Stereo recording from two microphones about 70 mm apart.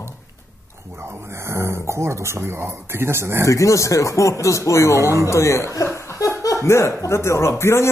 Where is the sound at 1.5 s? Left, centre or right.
Right.